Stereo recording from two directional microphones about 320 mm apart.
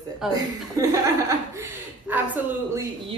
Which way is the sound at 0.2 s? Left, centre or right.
Centre.